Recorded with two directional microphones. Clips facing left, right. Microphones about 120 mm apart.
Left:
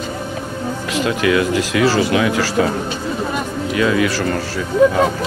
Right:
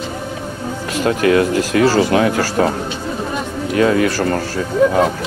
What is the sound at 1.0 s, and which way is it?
Speech, 45° right (ahead or behind).